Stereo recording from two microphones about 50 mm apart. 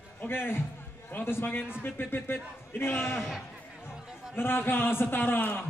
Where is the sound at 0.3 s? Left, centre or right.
Left.